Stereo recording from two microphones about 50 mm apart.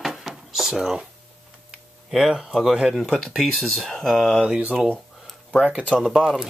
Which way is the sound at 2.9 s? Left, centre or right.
Centre.